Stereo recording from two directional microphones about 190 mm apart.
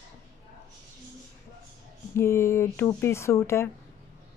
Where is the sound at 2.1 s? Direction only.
15° left (ahead or behind).